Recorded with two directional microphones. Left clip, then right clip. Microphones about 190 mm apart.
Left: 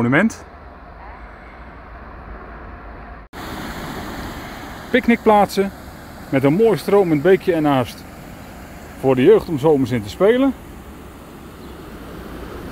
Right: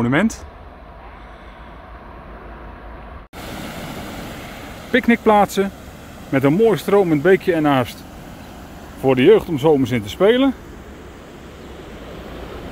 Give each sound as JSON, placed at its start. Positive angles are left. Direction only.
{"t": 0.0, "sound": "speech", "side_deg": 0}
{"t": 3.3, "sound": "waves", "side_deg": -45}
{"t": 4.9, "sound": "speech", "side_deg": 0}
{"t": 9.0, "sound": "speech", "side_deg": -5}
{"t": 12.1, "sound": "vehicle", "side_deg": 65}